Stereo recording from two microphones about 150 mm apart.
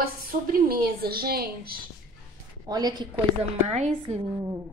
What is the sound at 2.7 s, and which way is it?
Speech, 25° right (ahead or behind).